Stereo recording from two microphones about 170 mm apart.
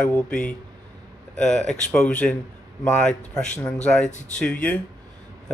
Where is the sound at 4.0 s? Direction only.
45° left (ahead or behind).